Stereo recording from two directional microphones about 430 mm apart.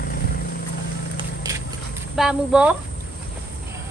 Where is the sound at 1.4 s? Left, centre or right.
Centre.